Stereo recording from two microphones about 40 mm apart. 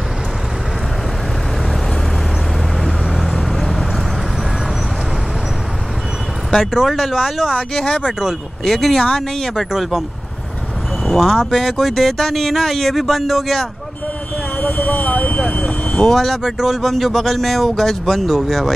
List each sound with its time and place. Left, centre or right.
2.8 s vehicle: centre
6.5 s speech: centre
7.7 s speech: centre
8.2 s speech: centre
11.1 s speech: centre
14.6 s vehicle: left
16.0 s speech: centre
16.4 s speech: centre